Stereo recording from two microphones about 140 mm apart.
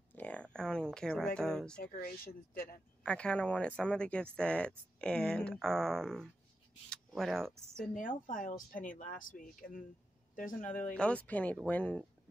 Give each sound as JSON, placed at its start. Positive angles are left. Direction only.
{"t": 0.1, "sound": "a sound", "side_deg": 10}
{"t": 1.8, "sound": "speech", "side_deg": 90}
{"t": 3.0, "sound": "speech", "side_deg": 5}
{"t": 7.9, "sound": "speech", "side_deg": 75}
{"t": 10.3, "sound": "speech", "side_deg": 70}
{"t": 10.9, "sound": "speech", "side_deg": 10}